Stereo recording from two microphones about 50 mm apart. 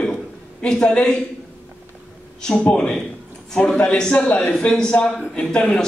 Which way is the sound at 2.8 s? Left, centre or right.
Centre.